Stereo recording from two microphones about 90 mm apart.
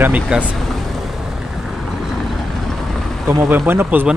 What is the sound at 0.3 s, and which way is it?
Speech, 10° right (ahead or behind).